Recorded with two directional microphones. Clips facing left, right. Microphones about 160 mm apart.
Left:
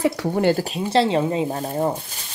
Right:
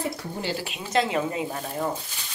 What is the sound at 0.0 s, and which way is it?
Speech, 90° left.